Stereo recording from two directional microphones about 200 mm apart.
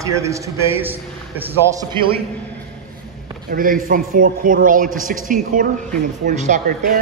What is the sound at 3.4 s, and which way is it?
A man's voice, 45° right (ahead or behind).